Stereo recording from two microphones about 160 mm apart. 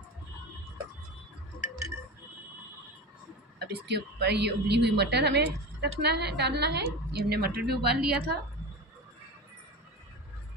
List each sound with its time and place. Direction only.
3.5 s a woman's voice: 90° right